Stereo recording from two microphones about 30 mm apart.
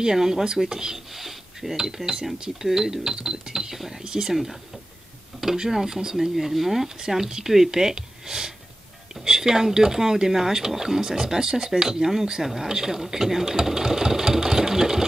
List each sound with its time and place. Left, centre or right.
0.0 s speech: centre
0.9 s speech: centre; by 3.7 s right
3.7 s speech: centre
4.0 s speech: right
4.3 s speech: centre
13.7 s sewing machine: centre